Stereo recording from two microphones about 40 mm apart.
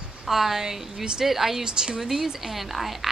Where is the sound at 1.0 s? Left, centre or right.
Right.